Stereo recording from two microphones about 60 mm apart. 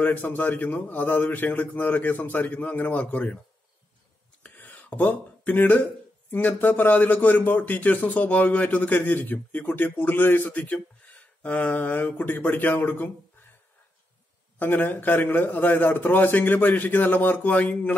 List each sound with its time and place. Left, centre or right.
0.0 s a man's voice: left
4.4 s a sound: left
6.3 s a man's voice: left
10.6 s a man's voice: left
14.6 s a man's voice: left